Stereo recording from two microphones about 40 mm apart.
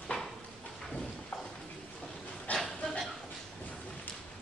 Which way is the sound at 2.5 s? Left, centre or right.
Left.